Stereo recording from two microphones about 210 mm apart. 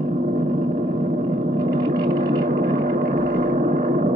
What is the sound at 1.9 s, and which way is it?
Vehicle, 45° right (ahead or behind).